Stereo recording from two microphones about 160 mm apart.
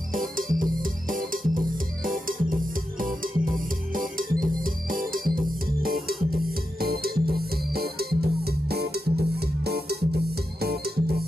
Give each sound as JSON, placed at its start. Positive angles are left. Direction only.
{"t": 0.1, "sound": "music", "side_deg": -60}